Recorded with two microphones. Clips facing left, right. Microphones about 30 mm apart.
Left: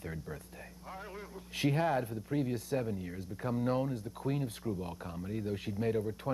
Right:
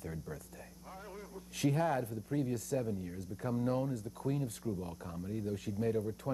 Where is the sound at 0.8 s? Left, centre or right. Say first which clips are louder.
Left 4 dB; left.